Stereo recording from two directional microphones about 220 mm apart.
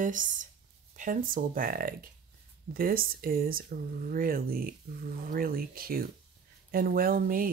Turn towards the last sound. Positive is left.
turn(degrees=-40)  # may be behind; listen again after turning